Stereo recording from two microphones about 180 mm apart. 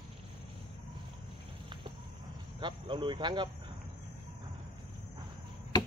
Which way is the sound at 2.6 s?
25° right (ahead or behind).